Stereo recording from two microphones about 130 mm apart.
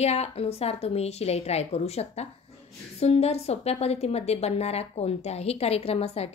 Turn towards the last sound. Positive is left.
turn(degrees=50)  # may be behind; listen again after turning